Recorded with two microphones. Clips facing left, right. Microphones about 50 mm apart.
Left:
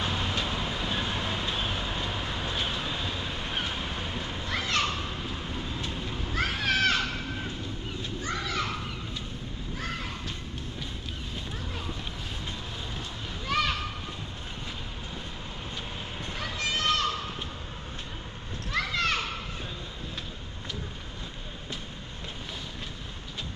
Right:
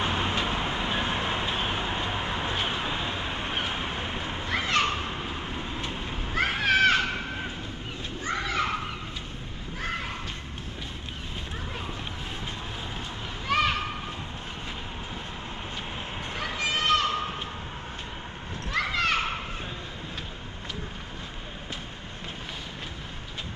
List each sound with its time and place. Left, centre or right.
0.0 s vehicle: right
8.2 s children playing: right
13.5 s children playing: right
16.3 s children playing: centre
18.7 s children playing: right